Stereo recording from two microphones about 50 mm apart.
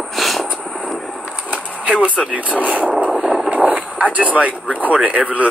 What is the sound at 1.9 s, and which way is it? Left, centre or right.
Speech, right.